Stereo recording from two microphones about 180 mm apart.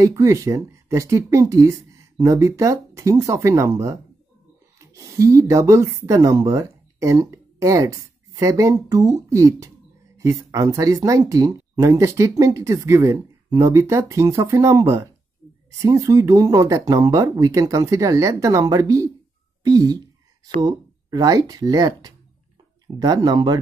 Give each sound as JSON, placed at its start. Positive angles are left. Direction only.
{"t": 0.0, "sound": "speech", "side_deg": -15}